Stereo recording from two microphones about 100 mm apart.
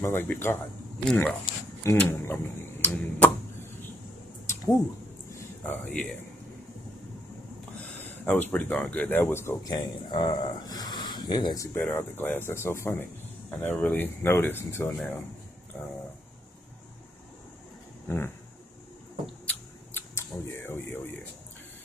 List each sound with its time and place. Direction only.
0.0 s speech: 20° left (ahead or behind)
5.7 s speech: 15° left (ahead or behind)
8.1 s speech: 20° left (ahead or behind)
9.7 s speech: 45° left (ahead or behind)
11.6 s speech: 25° left (ahead or behind)
13.5 s speech: 15° left (ahead or behind)
15.7 s speech: 10° left (ahead or behind)
18.0 s a sound: 20° left (ahead or behind)
19.4 s camera: 25° left (ahead or behind)